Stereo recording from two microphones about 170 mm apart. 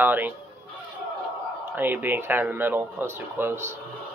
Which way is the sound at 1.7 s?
10° right (ahead or behind).